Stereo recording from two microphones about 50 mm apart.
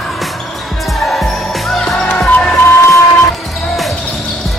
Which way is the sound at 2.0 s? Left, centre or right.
Left.